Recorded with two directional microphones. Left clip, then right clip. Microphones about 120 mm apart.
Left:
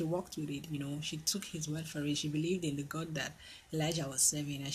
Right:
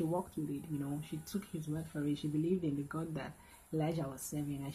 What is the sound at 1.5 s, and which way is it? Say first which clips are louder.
Speech: left 1 dB; 5° left (ahead or behind).